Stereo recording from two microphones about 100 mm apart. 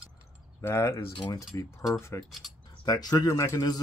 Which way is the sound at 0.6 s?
25° left (ahead or behind).